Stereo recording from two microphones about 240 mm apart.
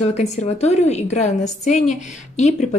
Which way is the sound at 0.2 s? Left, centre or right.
Left.